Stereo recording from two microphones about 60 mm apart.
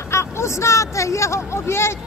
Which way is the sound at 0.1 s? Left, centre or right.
Left.